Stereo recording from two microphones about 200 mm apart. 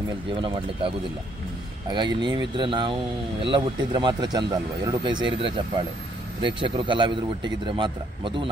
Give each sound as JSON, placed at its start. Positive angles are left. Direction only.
{"t": 0.3, "sound": "speech", "side_deg": -25}